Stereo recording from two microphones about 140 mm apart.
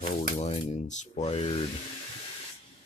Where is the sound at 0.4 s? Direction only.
55° left (ahead or behind).